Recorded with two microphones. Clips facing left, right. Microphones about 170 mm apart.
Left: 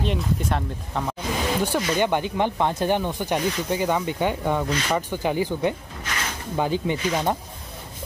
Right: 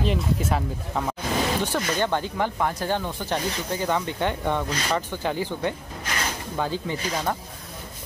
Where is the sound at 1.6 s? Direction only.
15° left (ahead or behind).